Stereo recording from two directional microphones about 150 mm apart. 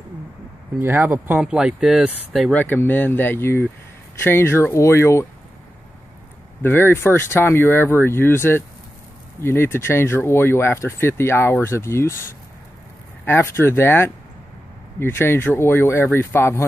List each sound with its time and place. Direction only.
0.7 s speech: 15° right (ahead or behind)
2.5 s speech: 15° left (ahead or behind)
6.6 s speech: 15° left (ahead or behind)